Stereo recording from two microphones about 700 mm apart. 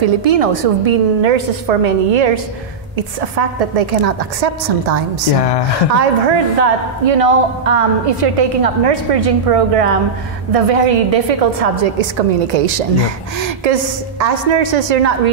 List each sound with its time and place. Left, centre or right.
0.0 s a woman's voice: right
14.2 s a woman's voice: right